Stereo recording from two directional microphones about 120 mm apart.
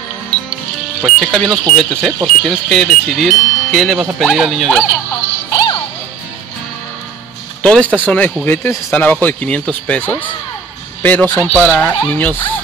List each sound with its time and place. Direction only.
1.0 s speech: centre (ahead or behind)
5.5 s music: 35° left (ahead or behind)
7.6 s speech: 10° left (ahead or behind)